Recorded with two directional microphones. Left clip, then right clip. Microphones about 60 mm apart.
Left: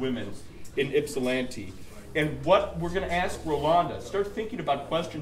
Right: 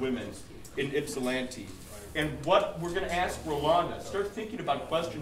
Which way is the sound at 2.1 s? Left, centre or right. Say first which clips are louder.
Left 3 dB; left.